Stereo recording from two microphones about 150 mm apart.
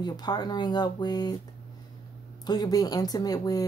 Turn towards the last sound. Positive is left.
turn(degrees=25)  # may be behind; listen again after turning